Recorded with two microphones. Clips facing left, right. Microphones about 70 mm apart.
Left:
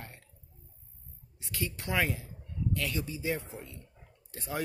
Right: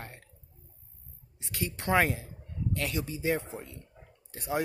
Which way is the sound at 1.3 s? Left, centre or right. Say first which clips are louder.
Right 1 dB; right.